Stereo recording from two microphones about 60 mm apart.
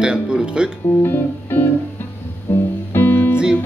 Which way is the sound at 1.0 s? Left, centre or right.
Left.